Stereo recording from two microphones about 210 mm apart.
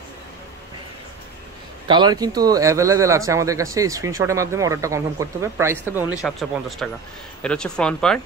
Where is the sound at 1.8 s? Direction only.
20° right (ahead or behind).